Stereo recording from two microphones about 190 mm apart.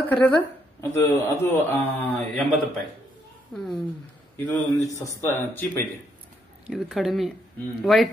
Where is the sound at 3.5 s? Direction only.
5° left (ahead or behind).